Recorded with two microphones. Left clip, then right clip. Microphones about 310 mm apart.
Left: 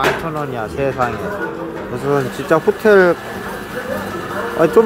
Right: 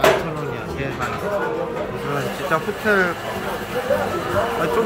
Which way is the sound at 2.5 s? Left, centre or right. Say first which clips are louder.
Left 8 dB; left.